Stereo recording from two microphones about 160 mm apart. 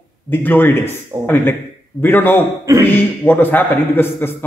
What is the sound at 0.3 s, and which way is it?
Speech, 10° left (ahead or behind).